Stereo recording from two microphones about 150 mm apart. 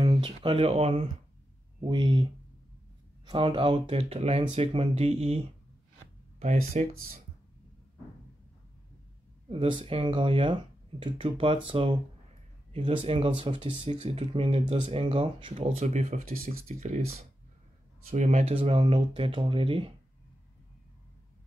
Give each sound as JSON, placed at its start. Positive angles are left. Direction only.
{"t": 0.1, "sound": "speech", "side_deg": -35}
{"t": 1.8, "sound": "speech", "side_deg": -35}
{"t": 3.3, "sound": "speech", "side_deg": -35}
{"t": 6.4, "sound": "speech", "side_deg": -50}
{"t": 9.5, "sound": "speech", "side_deg": -40}
{"t": 13.8, "sound": "speech", "side_deg": -45}
{"t": 18.5, "sound": "speech", "side_deg": -40}